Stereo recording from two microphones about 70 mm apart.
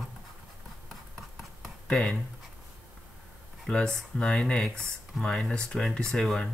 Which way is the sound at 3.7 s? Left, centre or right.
Centre.